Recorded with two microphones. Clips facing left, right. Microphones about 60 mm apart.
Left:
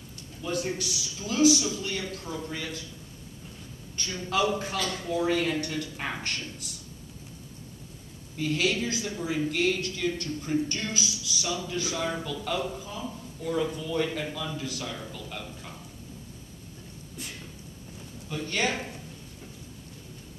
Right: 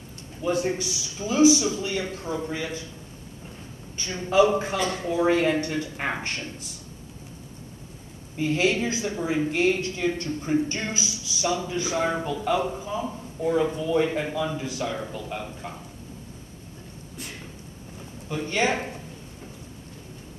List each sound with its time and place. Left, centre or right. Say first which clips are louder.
0.4 s speech: right 6 dB; right
4.1 s speech: right 7 dB; right
8.4 s speech: right 4 dB; right
12.9 s speech: right 7 dB; right
18.3 s speech: right 4 dB; right